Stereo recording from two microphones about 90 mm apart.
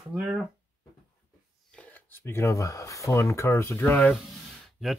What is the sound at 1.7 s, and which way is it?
Speech, 15° left (ahead or behind).